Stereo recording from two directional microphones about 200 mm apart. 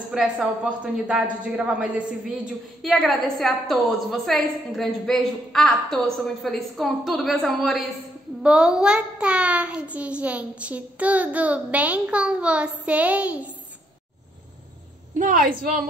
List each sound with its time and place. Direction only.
0.1 s a woman's voice: centre (ahead or behind)
15.1 s a woman's voice: 40° right (ahead or behind)